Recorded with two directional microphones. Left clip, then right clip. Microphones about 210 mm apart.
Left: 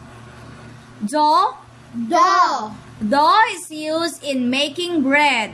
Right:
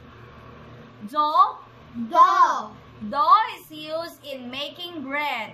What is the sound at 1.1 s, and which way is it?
Speech, 45° left (ahead or behind).